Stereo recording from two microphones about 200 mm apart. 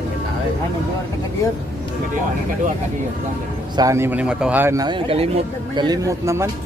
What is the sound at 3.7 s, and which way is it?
A man's voice, 15° right (ahead or behind).